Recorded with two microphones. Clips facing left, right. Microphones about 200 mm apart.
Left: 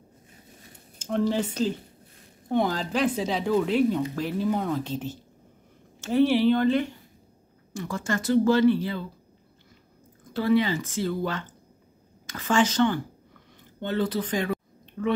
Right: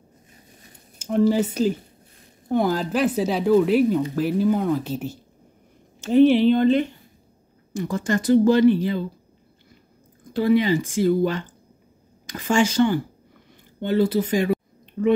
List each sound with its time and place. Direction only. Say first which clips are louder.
0.9 s speech: right 6 dB; 5° right (ahead or behind)
10.3 s speech: right 4 dB; 15° right (ahead or behind)